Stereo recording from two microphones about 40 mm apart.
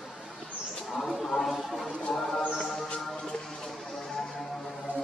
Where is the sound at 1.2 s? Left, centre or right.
Centre.